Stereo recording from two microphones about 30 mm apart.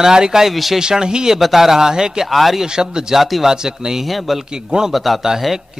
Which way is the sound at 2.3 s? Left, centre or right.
Centre.